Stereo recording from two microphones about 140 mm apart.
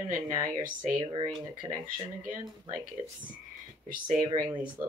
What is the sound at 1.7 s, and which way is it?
Speech, 80° right.